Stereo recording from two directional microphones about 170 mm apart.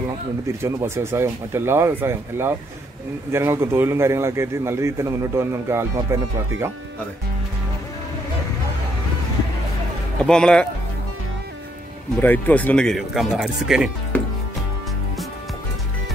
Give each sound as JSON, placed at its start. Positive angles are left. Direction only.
{"t": 0.5, "sound": "a man's voice", "side_deg": -15}
{"t": 10.2, "sound": "speech", "side_deg": 5}
{"t": 12.2, "sound": "speech", "side_deg": 10}